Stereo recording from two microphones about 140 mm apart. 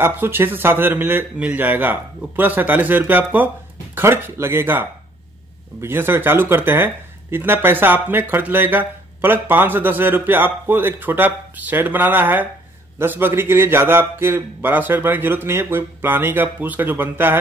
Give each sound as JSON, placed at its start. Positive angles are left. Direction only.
{"t": 0.0, "sound": "speech", "side_deg": -15}